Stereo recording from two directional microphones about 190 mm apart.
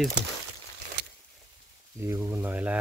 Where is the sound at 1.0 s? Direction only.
65° right (ahead or behind).